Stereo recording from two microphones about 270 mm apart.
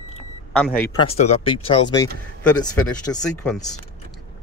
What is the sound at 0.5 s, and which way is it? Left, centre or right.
Speech, centre.